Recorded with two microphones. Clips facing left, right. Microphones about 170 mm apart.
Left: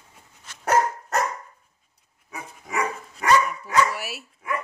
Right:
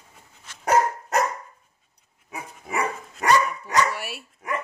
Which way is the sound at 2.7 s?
30° right (ahead or behind).